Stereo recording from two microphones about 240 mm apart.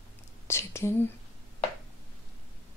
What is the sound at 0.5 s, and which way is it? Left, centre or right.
Whispering, centre.